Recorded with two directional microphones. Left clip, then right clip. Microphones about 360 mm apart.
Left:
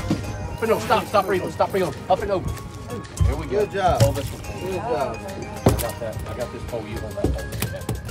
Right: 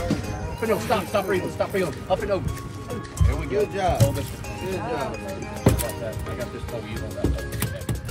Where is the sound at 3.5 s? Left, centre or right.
Left.